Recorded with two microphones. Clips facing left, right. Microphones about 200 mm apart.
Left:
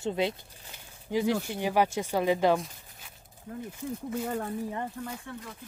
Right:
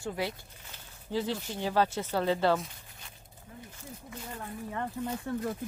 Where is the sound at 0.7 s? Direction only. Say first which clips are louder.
Left 1 dB; 10° left (ahead or behind).